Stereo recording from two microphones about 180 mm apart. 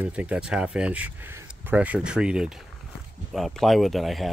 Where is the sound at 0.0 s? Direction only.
5° right (ahead or behind).